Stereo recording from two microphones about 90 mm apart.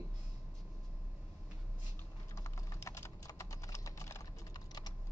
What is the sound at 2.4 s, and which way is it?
Typing, 35° left (ahead or behind).